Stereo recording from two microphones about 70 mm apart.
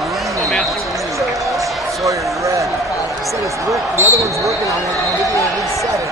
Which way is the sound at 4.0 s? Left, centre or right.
Right.